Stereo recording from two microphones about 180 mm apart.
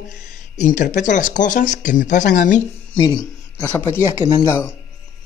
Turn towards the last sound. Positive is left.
turn(degrees=15)  # may be behind; listen again after turning